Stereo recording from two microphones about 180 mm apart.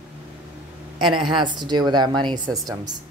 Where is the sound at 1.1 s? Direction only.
25° right (ahead or behind).